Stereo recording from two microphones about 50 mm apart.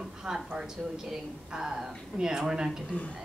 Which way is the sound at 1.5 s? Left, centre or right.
Centre.